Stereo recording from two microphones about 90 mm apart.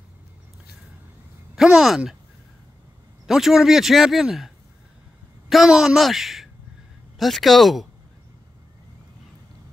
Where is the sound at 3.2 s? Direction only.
5° right (ahead or behind).